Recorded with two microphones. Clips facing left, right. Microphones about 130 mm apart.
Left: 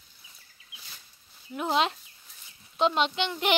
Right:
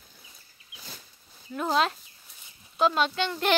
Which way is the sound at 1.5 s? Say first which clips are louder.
Right 1 dB; 15° left (ahead or behind).